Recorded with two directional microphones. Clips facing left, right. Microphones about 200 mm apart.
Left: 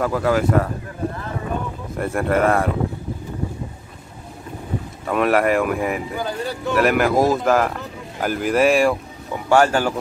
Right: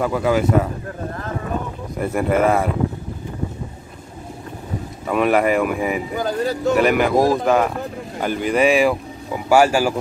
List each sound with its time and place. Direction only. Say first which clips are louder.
0.0 s speech: right 1 dB; centre (ahead or behind)
2.0 s speech: right 1 dB; centre (ahead or behind)
5.0 s speech: right 1 dB; centre (ahead or behind)
6.1 s speech: right 4 dB; 40° right (ahead or behind)
6.8 s speech: left 1 dB; centre (ahead or behind)